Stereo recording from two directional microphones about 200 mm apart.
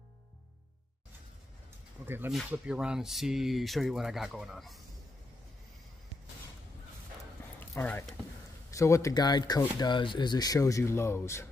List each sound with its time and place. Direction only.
2.0 s speech: 10° right (ahead or behind)
7.7 s speech: 10° left (ahead or behind)